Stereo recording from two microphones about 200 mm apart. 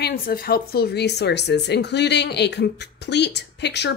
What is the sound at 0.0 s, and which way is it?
Speech, 50° left (ahead or behind).